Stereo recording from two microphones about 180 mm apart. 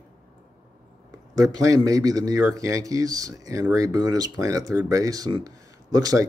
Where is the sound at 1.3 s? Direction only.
20° right (ahead or behind).